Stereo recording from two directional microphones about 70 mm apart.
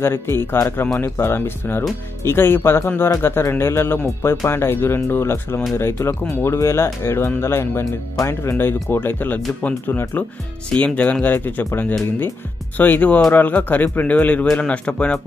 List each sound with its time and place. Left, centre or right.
0.0 s a man's voice: left; by 15.1 s centre